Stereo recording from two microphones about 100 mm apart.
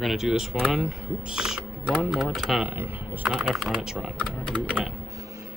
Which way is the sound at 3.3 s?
5° right (ahead or behind).